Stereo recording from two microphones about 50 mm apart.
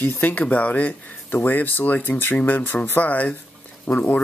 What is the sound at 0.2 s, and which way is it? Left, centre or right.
Speech, left.